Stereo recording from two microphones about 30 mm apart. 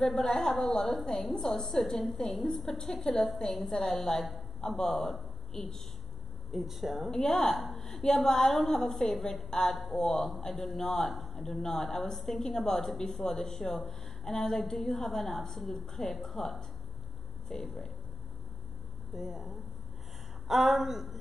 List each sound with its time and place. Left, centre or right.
0.0 s a woman's voice: centre
6.5 s speech: centre
7.2 s a woman's voice: centre
7.5 s speech: centre
7.8 s a woman's voice: centre
19.1 s speech: centre